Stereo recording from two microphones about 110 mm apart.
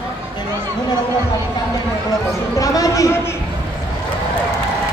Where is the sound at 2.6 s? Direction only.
30° left (ahead or behind).